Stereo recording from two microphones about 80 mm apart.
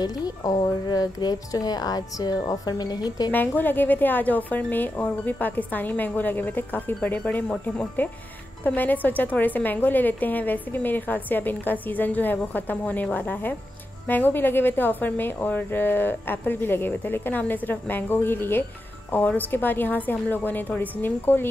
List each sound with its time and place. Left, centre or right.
0.0 s speech: left
3.3 s speech: left